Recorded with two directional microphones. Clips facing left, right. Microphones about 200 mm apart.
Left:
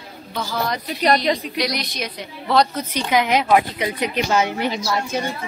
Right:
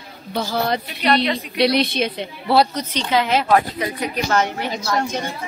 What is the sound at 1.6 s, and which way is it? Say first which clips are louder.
Speech: right 7 dB; 30° right (ahead or behind).